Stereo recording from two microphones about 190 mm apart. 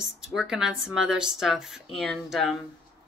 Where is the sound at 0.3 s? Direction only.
5° right (ahead or behind).